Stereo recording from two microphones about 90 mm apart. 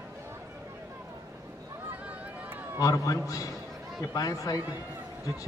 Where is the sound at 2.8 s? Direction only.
40° left (ahead or behind).